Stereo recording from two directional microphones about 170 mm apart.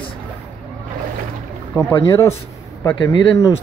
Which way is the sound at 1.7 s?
15° left (ahead or behind).